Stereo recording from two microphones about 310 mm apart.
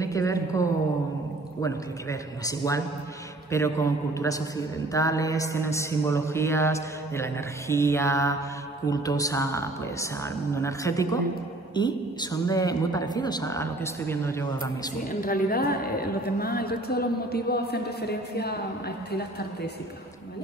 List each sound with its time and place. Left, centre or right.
0.0 s a woman's voice: centre
15.0 s a woman's voice: left